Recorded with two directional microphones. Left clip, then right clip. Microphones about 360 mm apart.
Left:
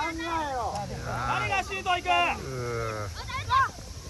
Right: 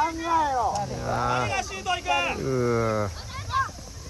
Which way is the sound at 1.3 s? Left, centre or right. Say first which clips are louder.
Right 1 dB; left.